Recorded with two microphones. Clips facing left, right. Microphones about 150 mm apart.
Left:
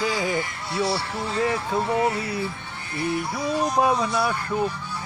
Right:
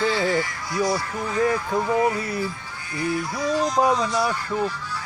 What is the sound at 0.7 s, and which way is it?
Music, 30° left (ahead or behind).